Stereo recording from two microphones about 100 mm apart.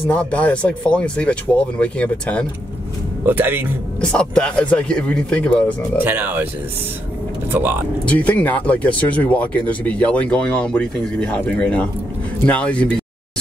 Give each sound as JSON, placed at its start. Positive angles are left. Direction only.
{"t": 0.1, "sound": "speech", "side_deg": 10}
{"t": 3.3, "sound": "speech", "side_deg": -20}
{"t": 4.0, "sound": "speech", "side_deg": 10}
{"t": 5.9, "sound": "speech", "side_deg": -20}
{"t": 8.0, "sound": "speech", "side_deg": 15}